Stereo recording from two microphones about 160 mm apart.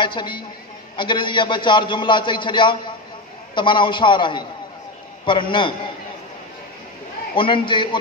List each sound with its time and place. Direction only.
0.0 s a man's voice: 30° left (ahead or behind)
7.3 s a man's voice: 30° left (ahead or behind)